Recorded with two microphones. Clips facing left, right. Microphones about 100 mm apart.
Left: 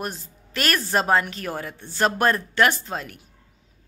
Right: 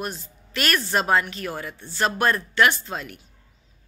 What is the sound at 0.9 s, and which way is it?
A woman's voice, 35° left (ahead or behind).